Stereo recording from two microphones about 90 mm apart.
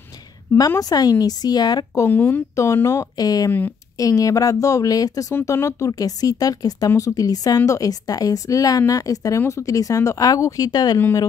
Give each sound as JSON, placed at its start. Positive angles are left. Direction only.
{"t": 0.7, "sound": "speech", "side_deg": 45}
{"t": 2.0, "sound": "speech", "side_deg": 20}
{"t": 2.5, "sound": "a woman's voice", "side_deg": 35}
{"t": 3.2, "sound": "speech", "side_deg": 45}
{"t": 3.4, "sound": "speech", "side_deg": 20}
{"t": 4.0, "sound": "a woman's voice", "side_deg": 40}